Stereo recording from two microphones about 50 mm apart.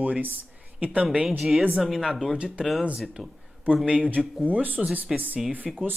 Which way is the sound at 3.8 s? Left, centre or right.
Right.